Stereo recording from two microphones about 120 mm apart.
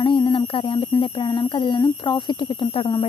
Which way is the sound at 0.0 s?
45° left (ahead or behind).